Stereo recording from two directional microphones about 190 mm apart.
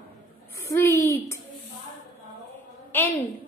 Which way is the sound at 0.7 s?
15° left (ahead or behind).